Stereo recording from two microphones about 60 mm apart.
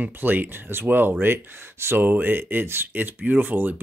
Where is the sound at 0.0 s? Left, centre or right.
Right.